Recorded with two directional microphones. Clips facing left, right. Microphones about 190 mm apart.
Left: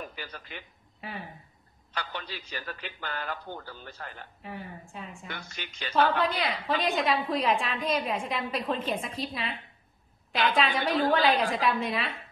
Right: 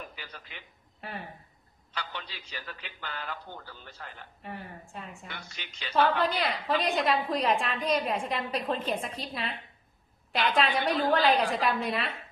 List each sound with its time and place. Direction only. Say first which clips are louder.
0.1 s a sound: left 5 dB; 45° left (ahead or behind)
1.0 s speech: even; centre (ahead or behind)
2.0 s a man's voice: left 3 dB; 45° left (ahead or behind)
4.4 s a woman's voice: even; centre (ahead or behind)